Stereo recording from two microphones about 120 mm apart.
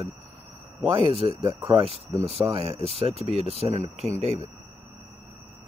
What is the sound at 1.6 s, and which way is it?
Speech, 55° right (ahead or behind).